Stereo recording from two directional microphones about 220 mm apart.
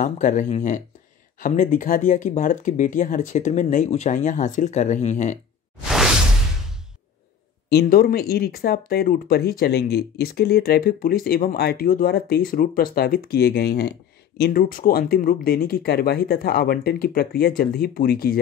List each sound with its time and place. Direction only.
0.0 s speech: 35° left (ahead or behind)
7.7 s speech: 40° left (ahead or behind)